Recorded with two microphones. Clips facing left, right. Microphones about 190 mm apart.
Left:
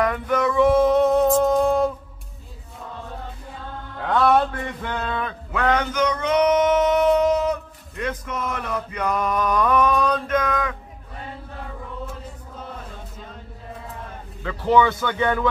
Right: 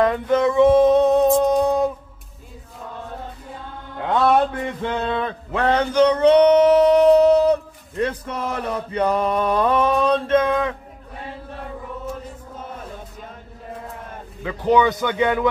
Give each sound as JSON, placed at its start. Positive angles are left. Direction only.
{"t": 0.0, "sound": "music", "side_deg": -25}
{"t": 3.9, "sound": "music", "side_deg": -20}
{"t": 14.4, "sound": "speech", "side_deg": -15}